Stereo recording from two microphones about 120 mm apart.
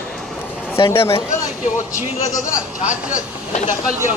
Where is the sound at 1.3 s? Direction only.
90° left.